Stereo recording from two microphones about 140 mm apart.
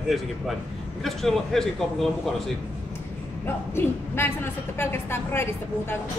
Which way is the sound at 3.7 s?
15° left (ahead or behind).